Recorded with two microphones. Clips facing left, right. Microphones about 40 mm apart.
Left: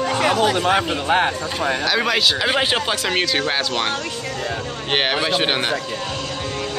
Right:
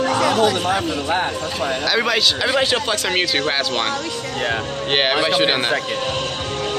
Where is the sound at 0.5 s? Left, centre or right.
Left.